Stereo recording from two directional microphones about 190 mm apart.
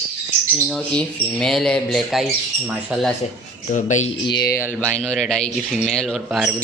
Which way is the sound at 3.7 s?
40° left (ahead or behind).